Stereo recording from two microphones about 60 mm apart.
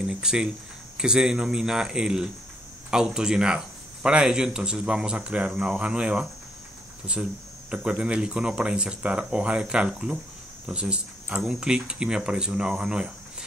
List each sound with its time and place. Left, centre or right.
0.0 s speech: centre
7.7 s speech: centre